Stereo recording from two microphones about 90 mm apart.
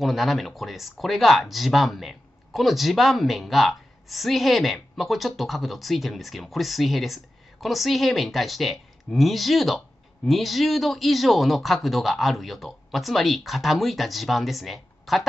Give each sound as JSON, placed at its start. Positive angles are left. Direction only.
{"t": 0.0, "sound": "speech", "side_deg": 0}